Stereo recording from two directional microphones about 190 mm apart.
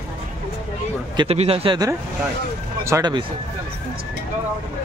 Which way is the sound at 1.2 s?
30° right (ahead or behind).